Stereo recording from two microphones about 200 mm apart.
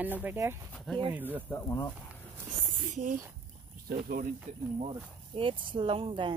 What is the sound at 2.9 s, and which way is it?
Speech, 40° right (ahead or behind).